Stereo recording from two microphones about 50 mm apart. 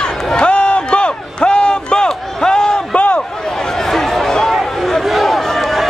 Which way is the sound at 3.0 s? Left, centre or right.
Left.